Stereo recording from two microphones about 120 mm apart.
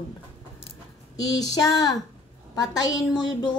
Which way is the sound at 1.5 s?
35° left (ahead or behind).